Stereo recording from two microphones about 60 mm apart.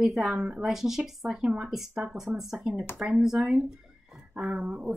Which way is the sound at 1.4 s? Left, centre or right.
Centre.